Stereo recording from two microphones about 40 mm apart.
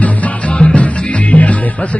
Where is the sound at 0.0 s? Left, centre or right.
Left.